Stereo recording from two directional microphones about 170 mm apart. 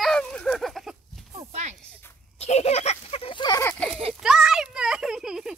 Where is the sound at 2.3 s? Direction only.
40° left (ahead or behind).